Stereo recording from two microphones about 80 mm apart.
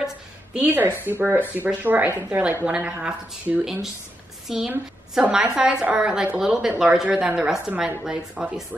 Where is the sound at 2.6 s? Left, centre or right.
Centre.